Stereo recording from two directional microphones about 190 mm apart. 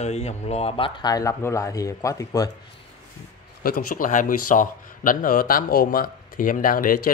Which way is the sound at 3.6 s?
50° left (ahead or behind).